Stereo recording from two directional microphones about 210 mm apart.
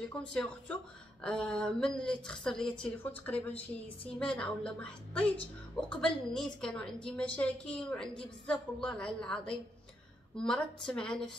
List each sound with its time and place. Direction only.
0.2 s a woman's voice: 5° left (ahead or behind)